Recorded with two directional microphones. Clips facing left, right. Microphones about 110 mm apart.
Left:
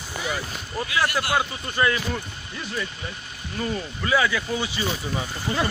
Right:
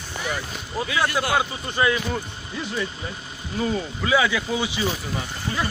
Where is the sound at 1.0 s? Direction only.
15° right (ahead or behind).